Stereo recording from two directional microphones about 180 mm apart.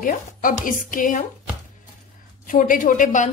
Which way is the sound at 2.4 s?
50° left (ahead or behind).